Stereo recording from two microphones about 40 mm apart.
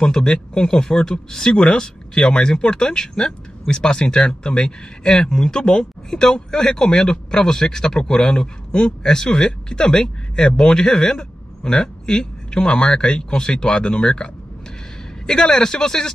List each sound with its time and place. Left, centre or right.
0.0 s speech: centre